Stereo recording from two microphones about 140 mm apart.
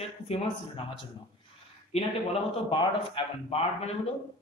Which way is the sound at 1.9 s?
45° left (ahead or behind).